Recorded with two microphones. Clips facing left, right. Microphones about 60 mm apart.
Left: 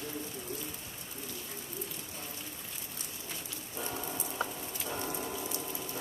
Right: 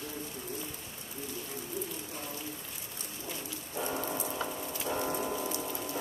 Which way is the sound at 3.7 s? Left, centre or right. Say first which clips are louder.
Right 5 dB; right.